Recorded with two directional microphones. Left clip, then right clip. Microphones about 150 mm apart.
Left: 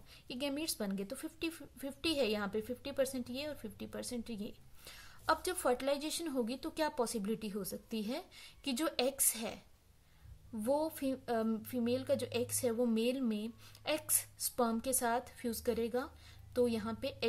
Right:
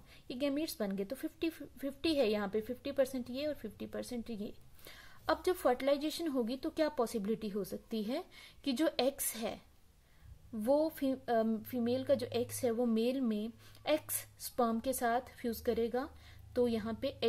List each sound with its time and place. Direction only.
0.1 s a woman's voice: 15° right (ahead or behind)
10.6 s a woman's voice: 15° right (ahead or behind)